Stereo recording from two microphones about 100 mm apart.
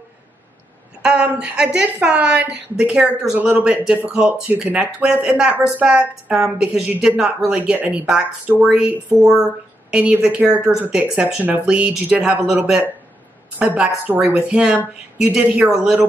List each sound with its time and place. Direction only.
1.0 s speech: 10° right (ahead or behind)
13.6 s speech: 15° right (ahead or behind)